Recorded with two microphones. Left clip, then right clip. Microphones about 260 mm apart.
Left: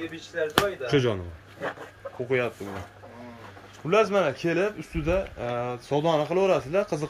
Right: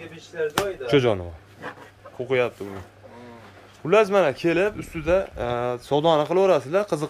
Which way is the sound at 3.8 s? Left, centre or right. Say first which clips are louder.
Right 4 dB; centre.